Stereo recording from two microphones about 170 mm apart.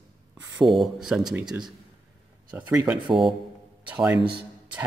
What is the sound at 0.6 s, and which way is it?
Speech, centre (ahead or behind).